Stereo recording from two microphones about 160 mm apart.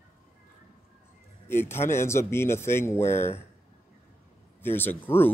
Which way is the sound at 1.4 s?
15° left (ahead or behind).